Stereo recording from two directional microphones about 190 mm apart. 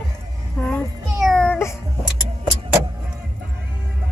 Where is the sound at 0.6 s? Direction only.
5° left (ahead or behind).